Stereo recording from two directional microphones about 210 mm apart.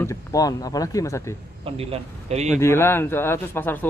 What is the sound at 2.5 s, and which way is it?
Speech, 10° left (ahead or behind).